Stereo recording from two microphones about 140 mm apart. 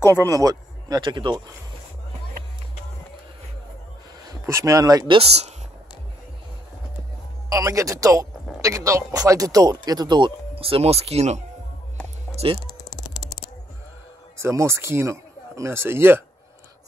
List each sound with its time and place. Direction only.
0.0 s speech: 20° right (ahead or behind)
4.3 s speech: 20° right (ahead or behind)
5.1 s speech: 45° right (ahead or behind)
7.4 s speech: 25° right (ahead or behind); by 11.4 s 50° right (ahead or behind)
12.4 s speech: 40° right (ahead or behind)
14.4 s speech: 20° right (ahead or behind)